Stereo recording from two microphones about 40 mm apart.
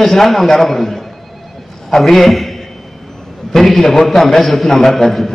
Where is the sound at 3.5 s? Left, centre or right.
Centre.